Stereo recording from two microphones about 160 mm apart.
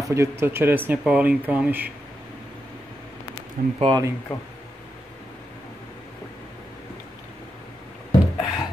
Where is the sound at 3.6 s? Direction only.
60° right (ahead or behind).